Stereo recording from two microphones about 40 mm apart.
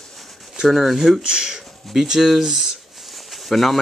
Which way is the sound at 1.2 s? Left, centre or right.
Centre.